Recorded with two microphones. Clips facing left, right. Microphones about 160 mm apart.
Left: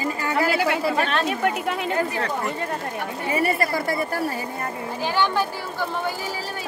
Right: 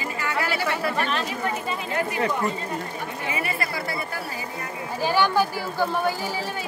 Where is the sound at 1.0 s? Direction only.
65° left (ahead or behind).